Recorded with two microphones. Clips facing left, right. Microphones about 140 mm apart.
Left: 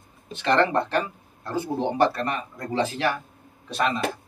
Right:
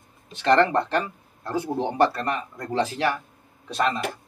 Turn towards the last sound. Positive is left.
turn(degrees=0)  # may be behind; listen again after turning